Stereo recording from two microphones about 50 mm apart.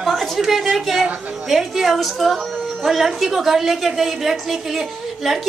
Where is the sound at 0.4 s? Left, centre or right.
Centre.